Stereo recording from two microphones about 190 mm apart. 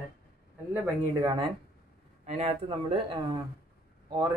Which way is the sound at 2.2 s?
40° right (ahead or behind).